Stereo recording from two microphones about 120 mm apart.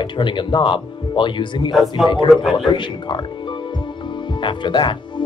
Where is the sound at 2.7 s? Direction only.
40° left (ahead or behind).